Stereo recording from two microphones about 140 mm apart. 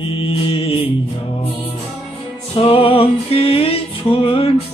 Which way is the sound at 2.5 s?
40° left (ahead or behind).